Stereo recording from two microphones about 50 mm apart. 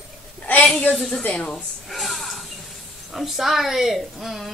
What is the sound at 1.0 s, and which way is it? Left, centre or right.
Speech, centre.